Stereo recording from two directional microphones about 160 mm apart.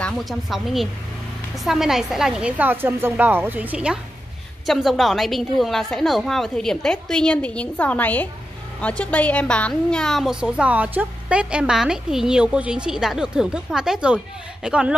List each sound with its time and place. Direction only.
0.0 s a woman's voice: centre (ahead or behind)